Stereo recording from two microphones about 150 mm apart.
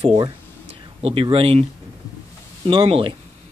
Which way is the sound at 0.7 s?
40° right (ahead or behind).